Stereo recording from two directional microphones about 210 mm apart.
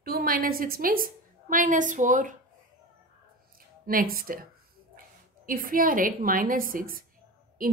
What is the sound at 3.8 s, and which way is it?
A woman's voice, 45° right (ahead or behind).